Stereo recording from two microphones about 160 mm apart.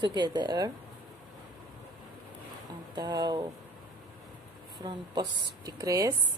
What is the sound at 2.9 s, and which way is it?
Speech, 25° right (ahead or behind).